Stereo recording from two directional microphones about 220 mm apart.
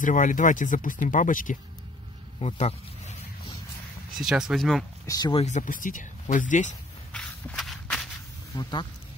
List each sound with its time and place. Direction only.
0.0 s speech: 35° left (ahead or behind)
2.4 s a sound: 30° left (ahead or behind)
4.2 s speech: centre (ahead or behind)
5.0 s speech: 15° left (ahead or behind); by 6.7 s 35° left (ahead or behind)
7.1 s walk: 5° left (ahead or behind)
8.5 s speech: 20° left (ahead or behind)